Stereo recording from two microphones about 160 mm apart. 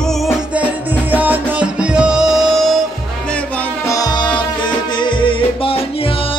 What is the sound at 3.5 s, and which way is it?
Music, 20° left (ahead or behind).